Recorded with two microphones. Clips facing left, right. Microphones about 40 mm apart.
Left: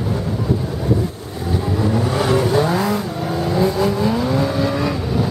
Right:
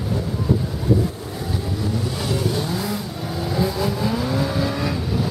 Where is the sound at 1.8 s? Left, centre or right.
Left.